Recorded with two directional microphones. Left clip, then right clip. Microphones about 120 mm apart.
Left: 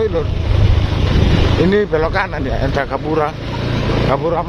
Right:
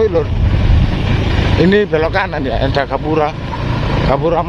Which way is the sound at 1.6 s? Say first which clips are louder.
Right 3 dB; centre (ahead or behind).